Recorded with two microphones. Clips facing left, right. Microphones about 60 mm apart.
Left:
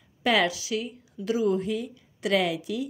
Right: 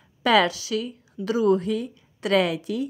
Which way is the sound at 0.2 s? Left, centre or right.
Right.